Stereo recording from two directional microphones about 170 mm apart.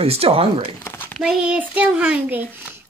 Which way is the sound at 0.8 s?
10° left (ahead or behind).